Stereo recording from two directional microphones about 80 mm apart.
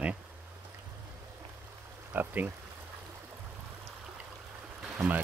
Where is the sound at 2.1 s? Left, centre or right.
Right.